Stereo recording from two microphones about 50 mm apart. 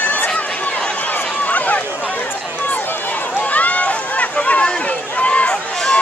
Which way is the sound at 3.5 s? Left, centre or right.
Left.